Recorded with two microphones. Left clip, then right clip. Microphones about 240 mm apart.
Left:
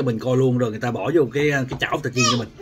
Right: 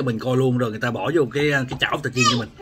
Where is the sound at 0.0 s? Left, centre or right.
Centre.